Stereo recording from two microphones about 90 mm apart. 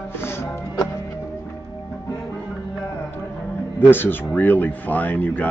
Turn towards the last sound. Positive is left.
turn(degrees=15)  # may be behind; listen again after turning